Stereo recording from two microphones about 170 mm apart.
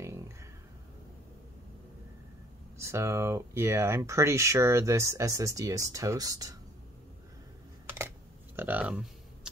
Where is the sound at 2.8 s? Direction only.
15° right (ahead or behind).